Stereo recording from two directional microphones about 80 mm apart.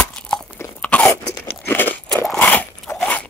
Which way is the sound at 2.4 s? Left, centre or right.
Left.